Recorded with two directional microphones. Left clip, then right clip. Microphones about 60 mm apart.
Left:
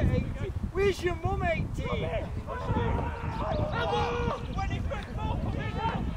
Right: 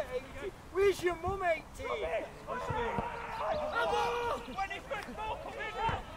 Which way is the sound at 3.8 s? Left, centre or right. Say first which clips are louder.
Left 3 dB; centre.